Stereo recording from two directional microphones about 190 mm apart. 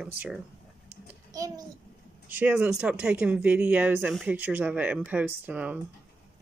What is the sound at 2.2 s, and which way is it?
Speech, 10° right (ahead or behind).